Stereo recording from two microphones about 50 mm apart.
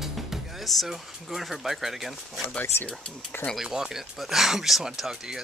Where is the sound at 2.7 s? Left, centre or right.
Left.